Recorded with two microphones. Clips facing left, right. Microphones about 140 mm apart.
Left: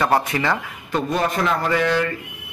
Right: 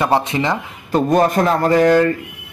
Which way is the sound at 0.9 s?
45° right (ahead or behind).